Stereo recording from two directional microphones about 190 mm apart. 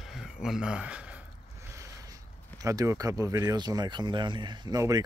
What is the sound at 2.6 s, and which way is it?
Speech, 15° right (ahead or behind).